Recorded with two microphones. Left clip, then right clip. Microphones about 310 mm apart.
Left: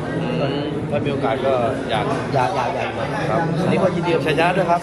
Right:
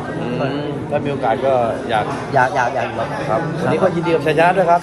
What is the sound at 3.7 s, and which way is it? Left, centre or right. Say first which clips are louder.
A man's voice: right 3 dB; right.